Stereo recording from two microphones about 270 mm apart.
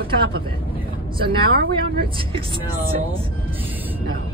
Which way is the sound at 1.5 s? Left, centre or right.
Right.